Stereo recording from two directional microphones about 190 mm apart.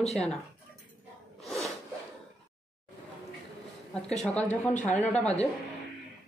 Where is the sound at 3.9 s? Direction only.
5° left (ahead or behind).